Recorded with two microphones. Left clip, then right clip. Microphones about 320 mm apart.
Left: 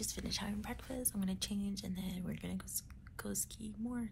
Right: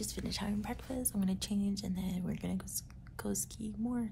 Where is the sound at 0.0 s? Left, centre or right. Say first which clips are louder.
Right 1 dB; centre.